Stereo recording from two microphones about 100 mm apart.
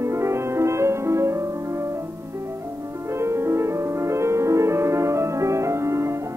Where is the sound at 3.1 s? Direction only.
25° right (ahead or behind).